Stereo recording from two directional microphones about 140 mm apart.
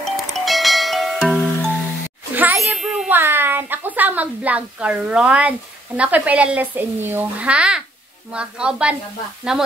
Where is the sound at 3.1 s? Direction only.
15° right (ahead or behind).